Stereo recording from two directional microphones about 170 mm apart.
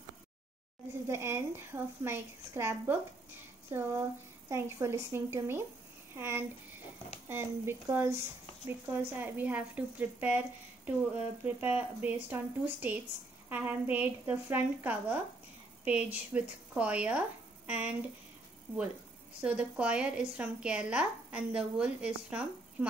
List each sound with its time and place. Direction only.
1.0 s speech: 15° right (ahead or behind)
11.4 s speech: 10° right (ahead or behind)
19.4 s speech: 5° right (ahead or behind)